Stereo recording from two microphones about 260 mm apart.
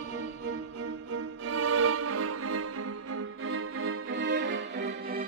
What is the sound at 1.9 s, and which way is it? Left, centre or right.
Music, right.